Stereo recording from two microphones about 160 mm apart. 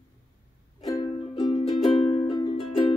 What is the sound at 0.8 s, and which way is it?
Music, 25° left (ahead or behind).